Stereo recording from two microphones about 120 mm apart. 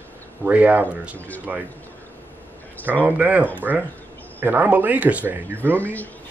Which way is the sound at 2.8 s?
15° right (ahead or behind).